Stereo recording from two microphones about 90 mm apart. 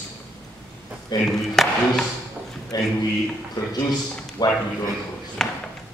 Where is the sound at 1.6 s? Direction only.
5° left (ahead or behind).